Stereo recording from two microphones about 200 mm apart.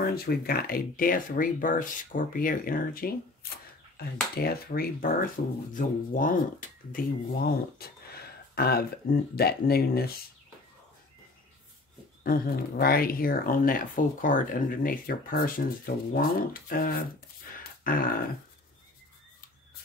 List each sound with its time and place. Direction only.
0.0 s speech: 50° left (ahead or behind)
12.2 s speech: 50° left (ahead or behind)
17.6 s grunt: 45° left (ahead or behind)